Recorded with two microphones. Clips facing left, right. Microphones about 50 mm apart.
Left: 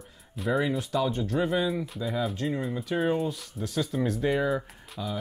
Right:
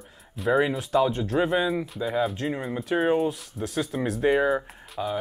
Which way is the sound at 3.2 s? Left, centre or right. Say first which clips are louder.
Right 4 dB; centre.